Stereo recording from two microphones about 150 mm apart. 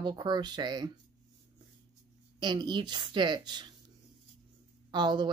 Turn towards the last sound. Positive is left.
turn(degrees=-30)  # may be behind; listen again after turning